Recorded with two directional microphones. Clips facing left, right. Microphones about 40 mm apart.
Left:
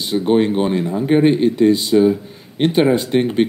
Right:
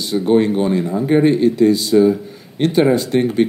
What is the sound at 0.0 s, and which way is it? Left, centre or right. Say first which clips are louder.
Speech: right 1 dB; left.